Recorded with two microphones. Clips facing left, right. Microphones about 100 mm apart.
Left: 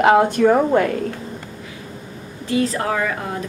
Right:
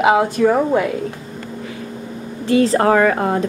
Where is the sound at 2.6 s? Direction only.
40° right (ahead or behind).